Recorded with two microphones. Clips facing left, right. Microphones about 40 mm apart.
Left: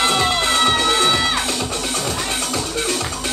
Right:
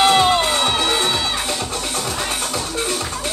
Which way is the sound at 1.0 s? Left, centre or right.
Left.